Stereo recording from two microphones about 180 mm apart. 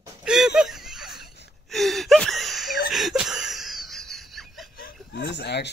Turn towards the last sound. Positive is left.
turn(degrees=70)  # may be behind; listen again after turning